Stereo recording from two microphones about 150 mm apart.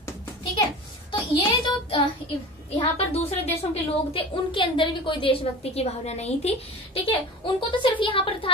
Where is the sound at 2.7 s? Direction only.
40° left (ahead or behind).